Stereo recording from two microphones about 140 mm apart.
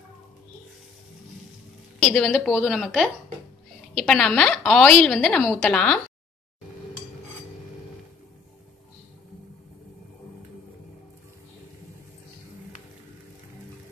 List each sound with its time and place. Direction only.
2.1 s a woman's voice: 5° left (ahead or behind)